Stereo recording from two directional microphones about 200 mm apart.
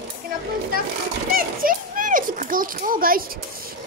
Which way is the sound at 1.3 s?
45° right (ahead or behind).